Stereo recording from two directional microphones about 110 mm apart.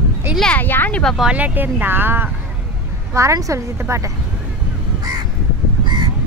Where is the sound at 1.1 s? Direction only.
10° right (ahead or behind); by 4.0 s 25° right (ahead or behind).